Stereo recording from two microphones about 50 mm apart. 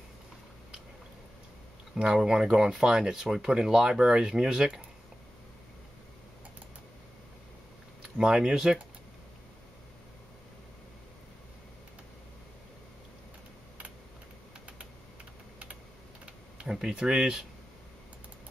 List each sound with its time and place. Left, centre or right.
2.0 s speech: centre
8.2 s speech: centre
16.5 s speech: centre